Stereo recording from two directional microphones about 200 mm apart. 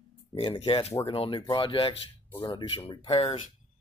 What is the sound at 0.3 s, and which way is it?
Speech, 25° left (ahead or behind).